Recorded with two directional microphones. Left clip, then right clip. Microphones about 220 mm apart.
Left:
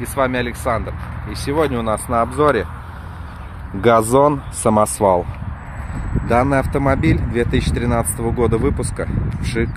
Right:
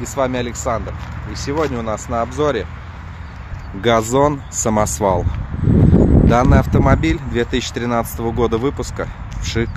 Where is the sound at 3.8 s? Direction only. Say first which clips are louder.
Left 2 dB; 15° left (ahead or behind).